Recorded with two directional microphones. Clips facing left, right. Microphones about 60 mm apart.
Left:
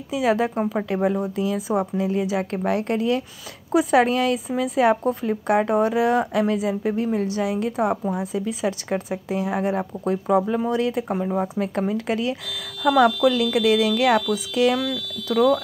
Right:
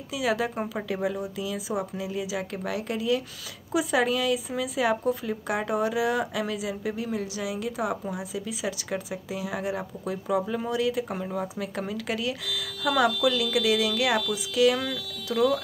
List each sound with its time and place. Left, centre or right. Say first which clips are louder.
0.1 s speech: left 6 dB; left
1.0 s speech: left 7 dB; left
11.1 s speech: left 8 dB; centre
11.9 s speech: left 6 dB; left